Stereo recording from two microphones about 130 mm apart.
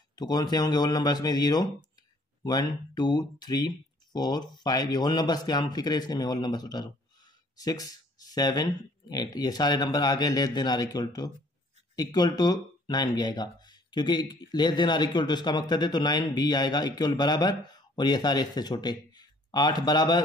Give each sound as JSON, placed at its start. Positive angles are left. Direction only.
{"t": 0.1, "sound": "speech", "side_deg": 30}